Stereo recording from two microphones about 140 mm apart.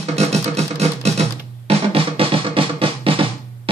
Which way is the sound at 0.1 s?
50° right (ahead or behind).